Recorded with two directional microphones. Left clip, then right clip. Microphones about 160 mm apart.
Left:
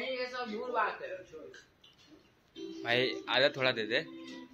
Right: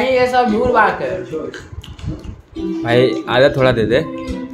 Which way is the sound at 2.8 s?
5° right (ahead or behind).